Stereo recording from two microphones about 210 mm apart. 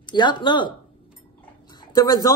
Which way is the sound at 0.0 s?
20° left (ahead or behind).